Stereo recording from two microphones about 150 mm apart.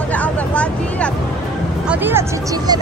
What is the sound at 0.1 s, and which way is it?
Vehicle, 10° left (ahead or behind).